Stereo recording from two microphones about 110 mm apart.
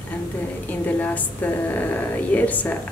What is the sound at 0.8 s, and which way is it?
Speech, 15° left (ahead or behind).